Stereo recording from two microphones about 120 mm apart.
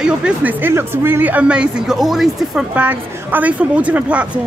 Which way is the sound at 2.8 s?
15° right (ahead or behind).